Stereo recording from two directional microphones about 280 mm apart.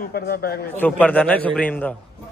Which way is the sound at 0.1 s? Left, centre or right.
Left.